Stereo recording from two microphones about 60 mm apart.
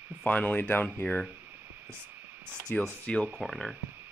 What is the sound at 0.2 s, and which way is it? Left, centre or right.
Speech, left.